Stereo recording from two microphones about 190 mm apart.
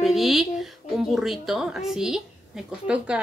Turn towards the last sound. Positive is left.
turn(degrees=-5)  # may be behind; listen again after turning